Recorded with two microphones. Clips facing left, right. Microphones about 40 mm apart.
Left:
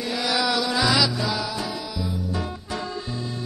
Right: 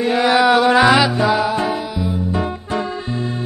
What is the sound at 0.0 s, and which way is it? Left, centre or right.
Music, right.